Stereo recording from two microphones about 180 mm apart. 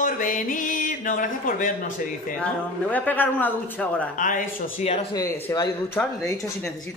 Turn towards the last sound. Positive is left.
turn(degrees=15)  # may be behind; listen again after turning